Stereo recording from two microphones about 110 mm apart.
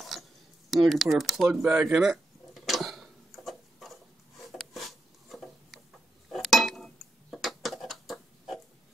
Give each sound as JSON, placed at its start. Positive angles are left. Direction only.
{"t": 0.7, "sound": "speech", "side_deg": 0}
{"t": 1.7, "sound": "speech", "side_deg": -15}
{"t": 2.0, "sound": "a sound", "side_deg": 0}
{"t": 4.5, "sound": "wood", "side_deg": 0}
{"t": 6.3, "sound": "dishes", "side_deg": 0}